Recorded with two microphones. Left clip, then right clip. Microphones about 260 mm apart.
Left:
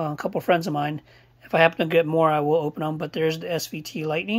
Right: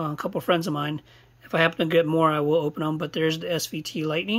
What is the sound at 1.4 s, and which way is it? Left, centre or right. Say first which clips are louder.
Speech: left 3 dB; right.